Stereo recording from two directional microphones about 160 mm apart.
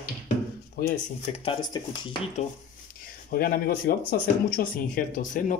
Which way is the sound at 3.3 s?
65° left (ahead or behind).